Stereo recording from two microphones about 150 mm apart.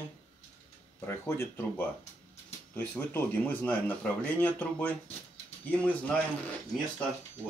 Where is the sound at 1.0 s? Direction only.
15° left (ahead or behind).